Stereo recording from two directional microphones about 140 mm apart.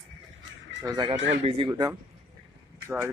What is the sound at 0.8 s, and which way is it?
Speech, 30° right (ahead or behind).